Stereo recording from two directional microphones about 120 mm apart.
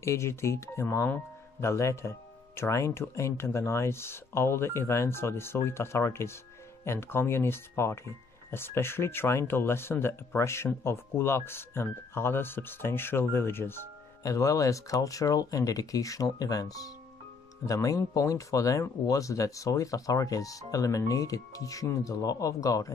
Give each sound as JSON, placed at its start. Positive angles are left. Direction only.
{"t": 0.0, "sound": "speech", "side_deg": 25}